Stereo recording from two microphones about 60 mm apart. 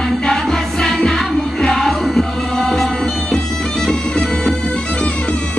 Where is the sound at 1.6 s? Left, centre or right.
Centre.